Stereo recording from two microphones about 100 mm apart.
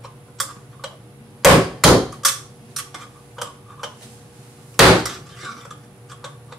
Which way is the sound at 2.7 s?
Centre (ahead or behind).